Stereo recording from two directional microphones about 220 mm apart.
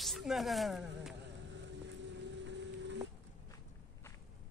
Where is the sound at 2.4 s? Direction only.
55° right (ahead or behind).